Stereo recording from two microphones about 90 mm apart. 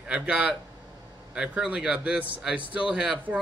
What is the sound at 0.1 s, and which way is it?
A man's voice, 10° right (ahead or behind).